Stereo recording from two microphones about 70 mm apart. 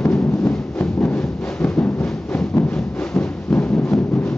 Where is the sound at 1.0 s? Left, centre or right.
Centre.